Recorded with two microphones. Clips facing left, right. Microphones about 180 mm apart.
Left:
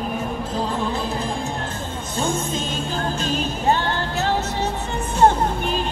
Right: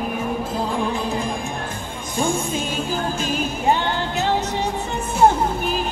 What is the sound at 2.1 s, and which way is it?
Music, 10° right (ahead or behind).